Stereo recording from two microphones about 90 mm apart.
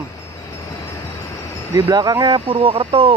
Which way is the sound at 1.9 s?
50° right (ahead or behind).